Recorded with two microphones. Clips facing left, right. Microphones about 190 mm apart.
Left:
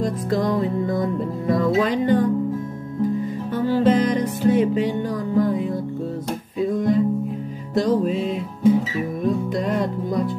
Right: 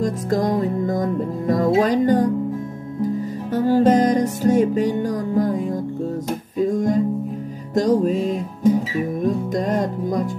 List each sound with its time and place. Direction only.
0.0 s music: 45° right (ahead or behind)
3.5 s music: 45° right (ahead or behind)